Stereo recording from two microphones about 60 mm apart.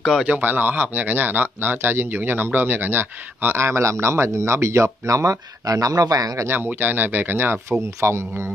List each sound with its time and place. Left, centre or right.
0.4 s speech: right
5.1 s speech: right
6.4 s speech: right
8.0 s speech: right